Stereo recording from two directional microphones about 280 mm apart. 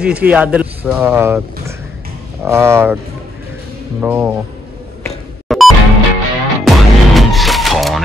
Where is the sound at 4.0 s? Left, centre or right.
Centre.